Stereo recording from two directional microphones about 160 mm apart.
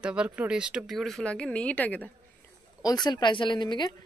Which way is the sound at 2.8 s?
25° left (ahead or behind).